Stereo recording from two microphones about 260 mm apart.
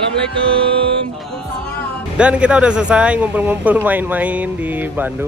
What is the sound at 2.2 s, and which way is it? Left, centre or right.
Speech, centre.